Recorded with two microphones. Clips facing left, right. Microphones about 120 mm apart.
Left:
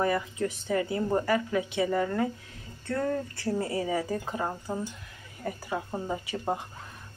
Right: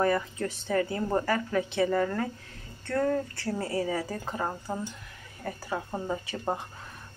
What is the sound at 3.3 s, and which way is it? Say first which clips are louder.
Speech: left 1 dB; 25° left (ahead or behind).